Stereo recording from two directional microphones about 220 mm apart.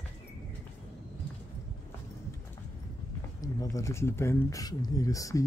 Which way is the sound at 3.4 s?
15° left (ahead or behind).